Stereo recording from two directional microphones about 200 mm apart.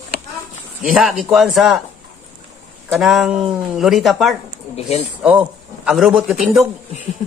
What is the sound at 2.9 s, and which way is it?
A man's voice, centre (ahead or behind).